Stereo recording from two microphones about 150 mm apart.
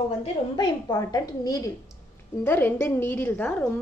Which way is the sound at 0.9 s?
25° left (ahead or behind).